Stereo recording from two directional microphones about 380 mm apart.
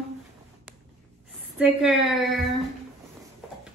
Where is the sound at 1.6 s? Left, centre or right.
Centre.